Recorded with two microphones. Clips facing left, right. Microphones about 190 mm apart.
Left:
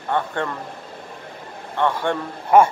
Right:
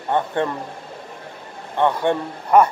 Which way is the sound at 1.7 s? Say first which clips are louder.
Right 3 dB; 15° right (ahead or behind).